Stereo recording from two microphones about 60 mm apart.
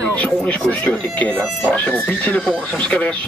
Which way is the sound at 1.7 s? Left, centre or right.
Left.